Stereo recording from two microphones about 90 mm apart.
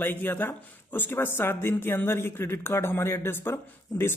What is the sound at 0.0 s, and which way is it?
Speech, 25° left (ahead or behind).